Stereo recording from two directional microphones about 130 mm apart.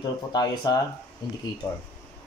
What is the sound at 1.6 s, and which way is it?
Speech, 20° left (ahead or behind).